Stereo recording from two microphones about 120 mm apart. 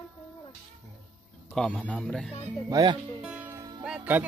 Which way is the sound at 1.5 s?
5° left (ahead or behind).